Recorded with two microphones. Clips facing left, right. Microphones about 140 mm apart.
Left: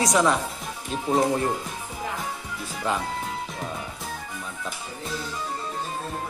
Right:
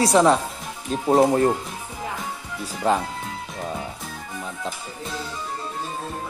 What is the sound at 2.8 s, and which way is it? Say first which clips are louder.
Speech: right 6 dB; 35° right (ahead or behind).